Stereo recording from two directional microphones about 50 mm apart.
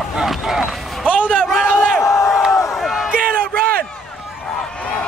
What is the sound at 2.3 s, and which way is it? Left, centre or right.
Crowd, centre.